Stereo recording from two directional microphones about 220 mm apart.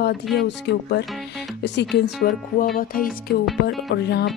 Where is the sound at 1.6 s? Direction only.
50° left (ahead or behind).